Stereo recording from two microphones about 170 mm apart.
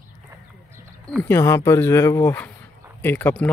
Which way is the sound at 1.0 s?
10° left (ahead or behind).